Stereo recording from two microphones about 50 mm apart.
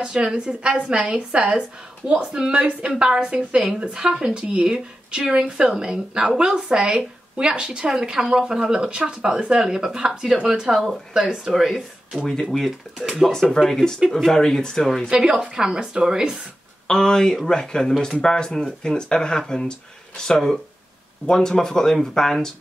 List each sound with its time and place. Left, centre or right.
0.0 s a woman's voice: centre
12.2 s speech: centre
12.4 s speech: centre
15.0 s speech: centre
16.8 s speech: centre